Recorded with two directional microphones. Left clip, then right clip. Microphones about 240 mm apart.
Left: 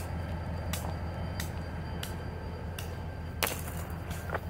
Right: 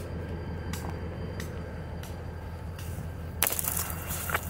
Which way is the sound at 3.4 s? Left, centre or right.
Right.